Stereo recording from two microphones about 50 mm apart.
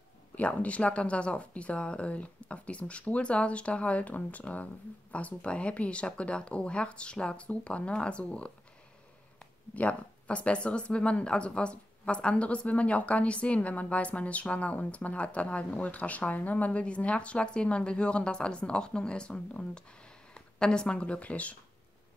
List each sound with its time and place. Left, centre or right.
0.4 s speech: left
9.8 s speech: left